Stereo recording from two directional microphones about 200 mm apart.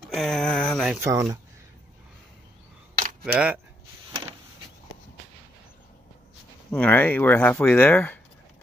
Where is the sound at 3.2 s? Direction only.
5° right (ahead or behind).